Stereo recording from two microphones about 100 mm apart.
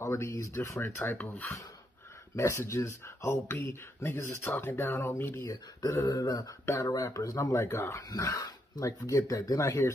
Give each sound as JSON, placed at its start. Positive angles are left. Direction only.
{"t": 0.0, "sound": "speech", "side_deg": 25}
{"t": 2.3, "sound": "speech", "side_deg": 30}
{"t": 7.5, "sound": "speech", "side_deg": 25}